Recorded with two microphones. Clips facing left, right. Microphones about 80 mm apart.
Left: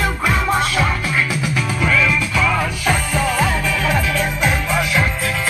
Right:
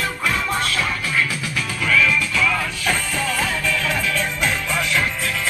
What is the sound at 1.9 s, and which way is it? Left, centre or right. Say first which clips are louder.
Music: even; centre.